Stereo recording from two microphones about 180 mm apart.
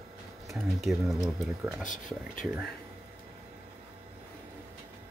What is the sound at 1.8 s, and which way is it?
Speech, 45° left (ahead or behind).